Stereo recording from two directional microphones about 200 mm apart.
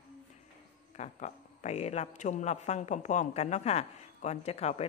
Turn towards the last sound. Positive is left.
turn(degrees=30)  # may be behind; listen again after turning